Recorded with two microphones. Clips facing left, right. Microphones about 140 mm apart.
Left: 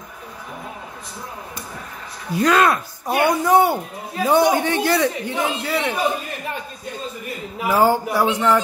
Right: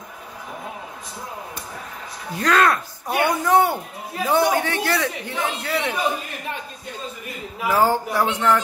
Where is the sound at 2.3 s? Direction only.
15° left (ahead or behind).